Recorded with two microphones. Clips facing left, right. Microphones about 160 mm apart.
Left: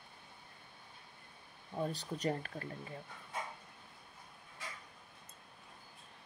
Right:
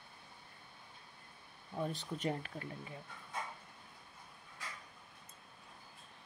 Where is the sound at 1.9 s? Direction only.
40° left (ahead or behind).